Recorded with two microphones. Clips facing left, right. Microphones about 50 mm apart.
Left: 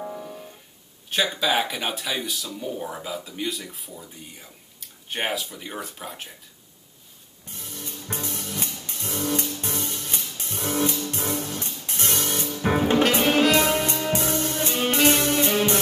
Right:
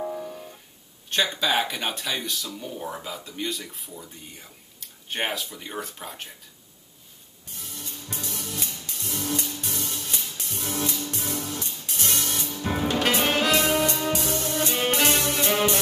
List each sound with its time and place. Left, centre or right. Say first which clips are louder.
0.0 s music: right 2 dB; centre
1.1 s speech: left 1 dB; centre
7.4 s music: left 2 dB; left
13.2 s music: left 4 dB; centre
13.5 s music: left 1 dB; left